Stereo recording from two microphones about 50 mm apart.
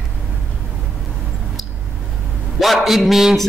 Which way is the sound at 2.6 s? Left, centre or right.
Centre.